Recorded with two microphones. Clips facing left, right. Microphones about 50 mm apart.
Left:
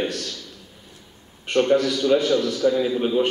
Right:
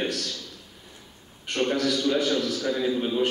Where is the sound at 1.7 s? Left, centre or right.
Centre.